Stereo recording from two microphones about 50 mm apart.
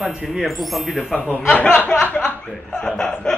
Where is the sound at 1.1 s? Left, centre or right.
Left.